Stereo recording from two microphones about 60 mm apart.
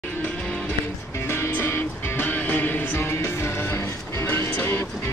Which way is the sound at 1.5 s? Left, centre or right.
Left.